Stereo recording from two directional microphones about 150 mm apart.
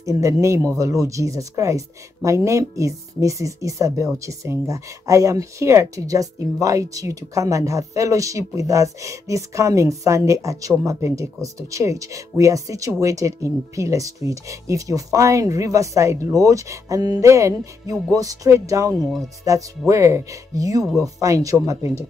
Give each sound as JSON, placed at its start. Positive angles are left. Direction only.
{"t": 0.0, "sound": "speech", "side_deg": -20}